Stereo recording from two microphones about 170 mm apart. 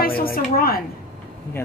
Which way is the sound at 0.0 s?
60° left (ahead or behind).